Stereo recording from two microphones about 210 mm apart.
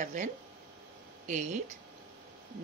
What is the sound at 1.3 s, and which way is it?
Speech, 35° right (ahead or behind).